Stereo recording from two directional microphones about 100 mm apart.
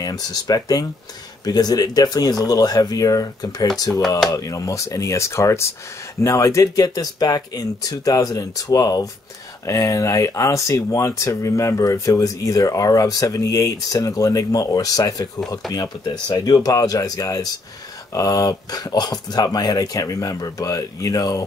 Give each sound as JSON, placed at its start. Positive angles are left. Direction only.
{"t": 0.0, "sound": "speech", "side_deg": 40}